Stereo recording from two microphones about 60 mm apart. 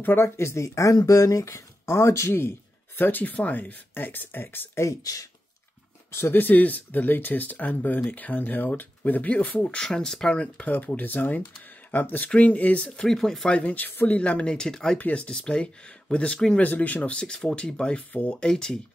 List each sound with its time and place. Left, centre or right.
0.0 s speech: left
0.4 s speech: left
3.0 s speech: left
5.0 s speech: left
6.1 s speech: left
9.8 s speech: centre
11.0 s speech: left
13.0 s speech: centre
13.5 s speech: left
15.0 s speech: left